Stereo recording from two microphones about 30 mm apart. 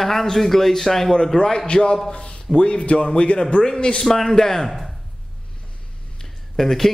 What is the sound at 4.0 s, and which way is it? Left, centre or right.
Speech, centre.